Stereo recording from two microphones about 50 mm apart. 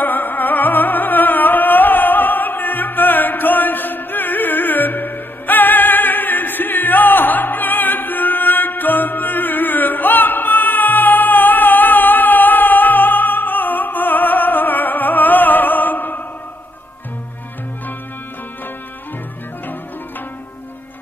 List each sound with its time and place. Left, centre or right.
0.0 s music: left